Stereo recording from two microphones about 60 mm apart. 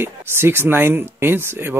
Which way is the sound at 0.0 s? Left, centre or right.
Right.